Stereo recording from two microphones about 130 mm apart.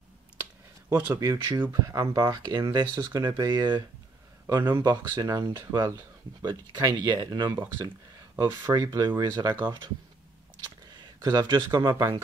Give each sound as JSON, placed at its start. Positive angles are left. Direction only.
{"t": 0.8, "sound": "speech", "side_deg": -15}
{"t": 11.0, "sound": "speech", "side_deg": -30}